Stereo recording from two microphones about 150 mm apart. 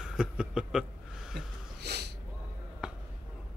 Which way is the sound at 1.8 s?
90° right.